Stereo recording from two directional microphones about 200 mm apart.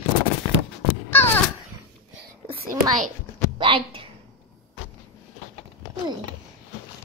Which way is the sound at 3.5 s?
25° right (ahead or behind).